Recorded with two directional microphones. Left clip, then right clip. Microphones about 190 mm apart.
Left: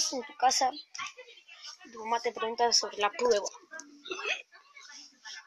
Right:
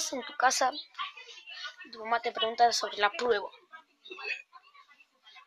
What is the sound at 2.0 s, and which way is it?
Speech, 10° right (ahead or behind).